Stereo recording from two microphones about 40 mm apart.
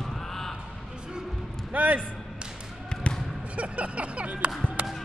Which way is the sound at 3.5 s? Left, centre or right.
Right.